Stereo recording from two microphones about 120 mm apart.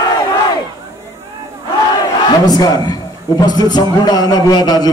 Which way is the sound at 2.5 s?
35° left (ahead or behind).